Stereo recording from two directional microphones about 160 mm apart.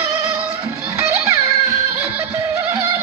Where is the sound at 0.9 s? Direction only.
20° right (ahead or behind).